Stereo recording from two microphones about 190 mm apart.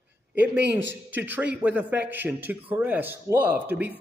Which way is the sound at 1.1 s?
10° right (ahead or behind).